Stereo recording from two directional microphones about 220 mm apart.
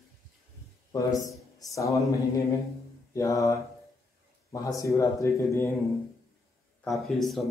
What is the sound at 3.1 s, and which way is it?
A man's voice, 15° left (ahead or behind).